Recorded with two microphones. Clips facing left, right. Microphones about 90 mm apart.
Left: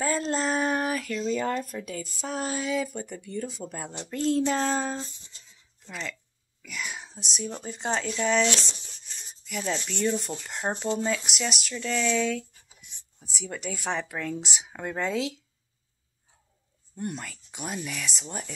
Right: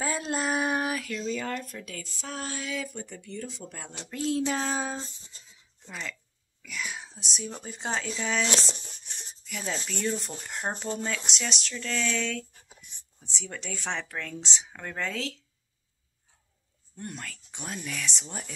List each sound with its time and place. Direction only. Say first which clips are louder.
0.0 s a sound: left 3 dB; 10° right (ahead or behind)
1.3 s speech: left 5 dB; 20° left (ahead or behind); by 5.0 s 5° right (ahead or behind)
6.6 s speech: even; centre (ahead or behind)
16.9 s speech: left 5 dB; 15° left (ahead or behind)